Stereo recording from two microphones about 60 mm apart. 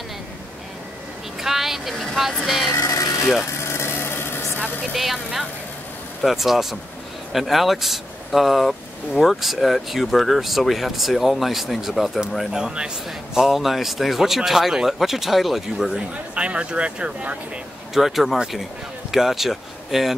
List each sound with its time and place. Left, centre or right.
1.4 s speech: centre
2.8 s music: left
3.6 s a sound: left
4.9 s speech: centre
12.4 s speech: centre
16.3 s speech: centre
17.9 s speech: centre